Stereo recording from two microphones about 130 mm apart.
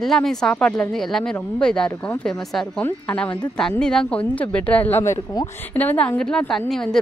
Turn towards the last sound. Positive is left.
turn(degrees=5)  # may be behind; listen again after turning